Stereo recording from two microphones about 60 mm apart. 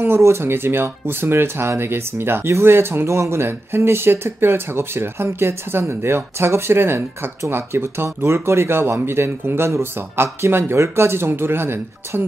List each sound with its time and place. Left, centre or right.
0.0 s speech: right